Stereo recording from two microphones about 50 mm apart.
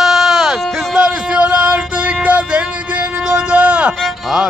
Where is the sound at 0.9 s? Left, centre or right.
Centre.